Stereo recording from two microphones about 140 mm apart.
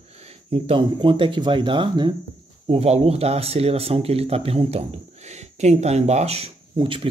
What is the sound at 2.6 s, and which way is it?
Speech, 50° right (ahead or behind).